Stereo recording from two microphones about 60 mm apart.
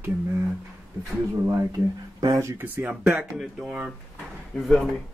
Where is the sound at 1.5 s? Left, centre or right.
Right.